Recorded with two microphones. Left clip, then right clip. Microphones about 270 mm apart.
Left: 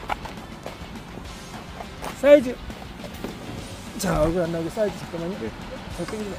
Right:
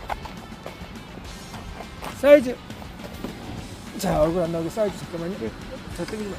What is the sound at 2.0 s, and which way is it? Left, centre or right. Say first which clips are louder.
Music: even; centre.